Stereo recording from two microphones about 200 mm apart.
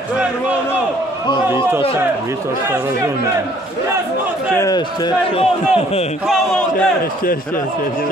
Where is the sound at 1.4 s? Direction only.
15° right (ahead or behind).